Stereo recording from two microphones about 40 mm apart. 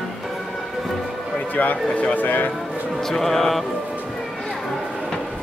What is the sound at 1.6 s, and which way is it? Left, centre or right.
Speech, left.